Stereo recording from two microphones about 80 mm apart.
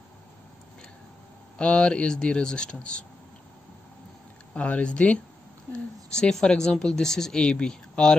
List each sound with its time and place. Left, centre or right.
1.6 s speech: centre
4.6 s speech: centre